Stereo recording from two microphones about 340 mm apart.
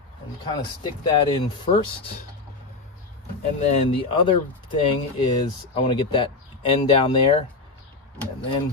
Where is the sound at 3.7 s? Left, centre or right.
Centre.